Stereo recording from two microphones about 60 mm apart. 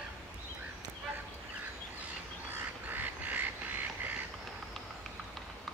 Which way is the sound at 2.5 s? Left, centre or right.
Right.